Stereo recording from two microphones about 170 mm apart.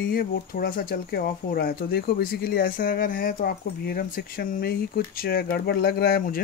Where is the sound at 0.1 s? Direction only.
60° left (ahead or behind).